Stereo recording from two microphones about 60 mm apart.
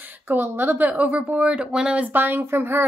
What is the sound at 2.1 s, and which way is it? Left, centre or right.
Speech, right.